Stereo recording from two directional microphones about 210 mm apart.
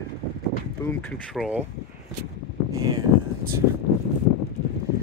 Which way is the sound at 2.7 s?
20° right (ahead or behind).